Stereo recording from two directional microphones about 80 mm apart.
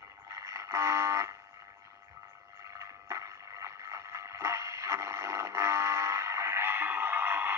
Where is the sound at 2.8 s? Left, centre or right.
Right.